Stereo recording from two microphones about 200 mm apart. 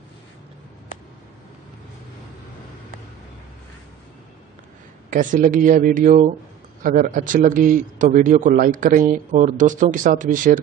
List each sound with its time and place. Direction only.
5.1 s a man's voice: 40° right (ahead or behind)